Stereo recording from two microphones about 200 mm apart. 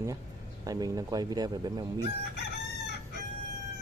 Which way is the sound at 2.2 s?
55° left (ahead or behind).